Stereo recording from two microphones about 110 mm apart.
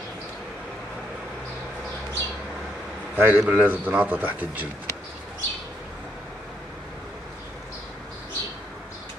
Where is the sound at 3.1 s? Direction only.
15° right (ahead or behind).